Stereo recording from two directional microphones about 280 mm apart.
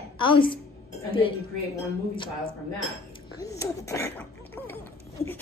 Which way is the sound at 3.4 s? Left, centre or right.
Centre.